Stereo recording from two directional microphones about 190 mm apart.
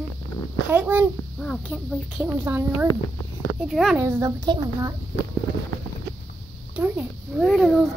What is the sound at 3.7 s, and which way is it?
Speech, centre (ahead or behind).